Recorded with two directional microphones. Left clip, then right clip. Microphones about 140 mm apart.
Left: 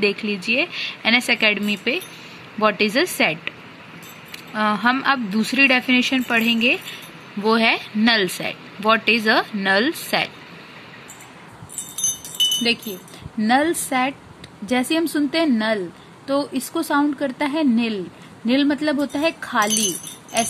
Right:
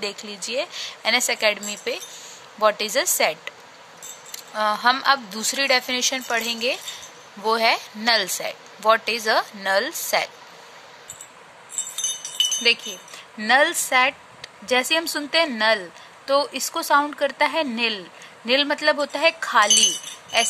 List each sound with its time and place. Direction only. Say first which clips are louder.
0.0 s speech: left 9 dB; 15° right (ahead or behind)
4.6 s speech: even; 15° right (ahead or behind)
13.4 s speech: right 1 dB; 15° right (ahead or behind)